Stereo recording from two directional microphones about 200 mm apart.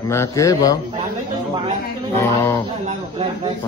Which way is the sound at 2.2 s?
15° left (ahead or behind).